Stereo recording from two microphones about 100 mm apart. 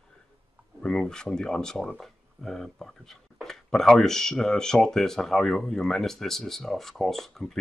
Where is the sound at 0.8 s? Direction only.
5° left (ahead or behind).